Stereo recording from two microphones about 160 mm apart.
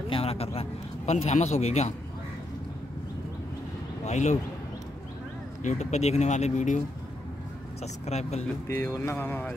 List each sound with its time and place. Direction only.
0.1 s a man's voice: 40° left (ahead or behind)
4.0 s speech: 45° left (ahead or behind)
5.6 s speech: 50° left (ahead or behind)
7.8 s speech: 40° left (ahead or behind)
8.6 s speech: 15° left (ahead or behind)